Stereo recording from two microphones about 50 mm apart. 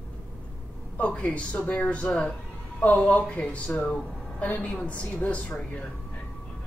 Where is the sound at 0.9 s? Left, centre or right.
Left.